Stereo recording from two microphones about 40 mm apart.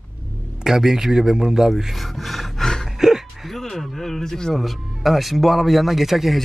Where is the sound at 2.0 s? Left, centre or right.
Centre.